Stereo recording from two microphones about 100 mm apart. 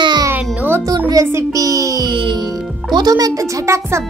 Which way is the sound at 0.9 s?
40° right (ahead or behind).